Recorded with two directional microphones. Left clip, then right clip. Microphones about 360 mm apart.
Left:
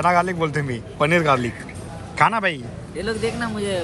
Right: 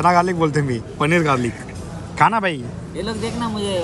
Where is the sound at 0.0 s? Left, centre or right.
Centre.